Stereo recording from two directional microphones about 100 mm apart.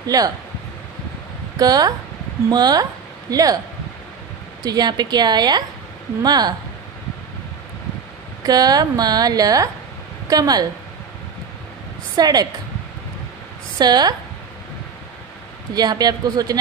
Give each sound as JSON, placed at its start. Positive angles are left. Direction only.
{"t": 0.0, "sound": "speech", "side_deg": -40}
{"t": 1.6, "sound": "speech", "side_deg": -40}
{"t": 4.6, "sound": "a woman's voice", "side_deg": -45}
{"t": 8.5, "sound": "speech", "side_deg": -40}
{"t": 12.2, "sound": "speech", "side_deg": -40}
{"t": 13.7, "sound": "a woman's voice", "side_deg": -45}
{"t": 15.7, "sound": "speech", "side_deg": -40}